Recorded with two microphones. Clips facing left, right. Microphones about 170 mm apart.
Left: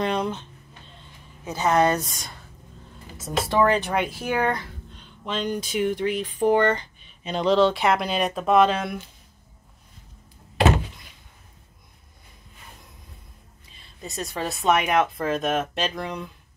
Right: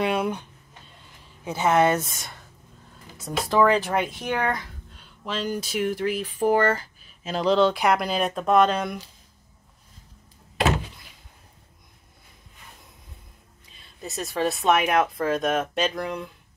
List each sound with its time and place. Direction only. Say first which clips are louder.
0.0 s a sound: right 1 dB; 10° right (ahead or behind)
1.4 s speech: even; 10° right (ahead or behind)
2.0 s speech: right 1 dB; 25° right (ahead or behind)
3.4 s speech: right 1 dB; centre (ahead or behind)
13.7 s speech: even; centre (ahead or behind)